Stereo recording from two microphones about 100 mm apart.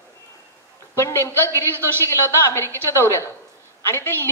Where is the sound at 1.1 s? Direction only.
25° left (ahead or behind).